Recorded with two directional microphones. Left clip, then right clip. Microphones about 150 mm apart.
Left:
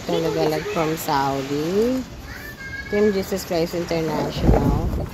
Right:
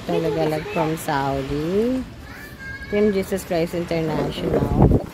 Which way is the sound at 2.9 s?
15° right (ahead or behind).